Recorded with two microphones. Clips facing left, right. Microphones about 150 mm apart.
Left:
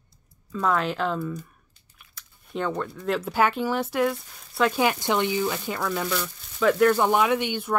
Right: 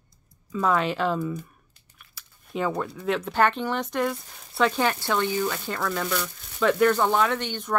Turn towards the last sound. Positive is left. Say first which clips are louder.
# left 3 dB
turn(degrees=10)  # may be behind; listen again after turning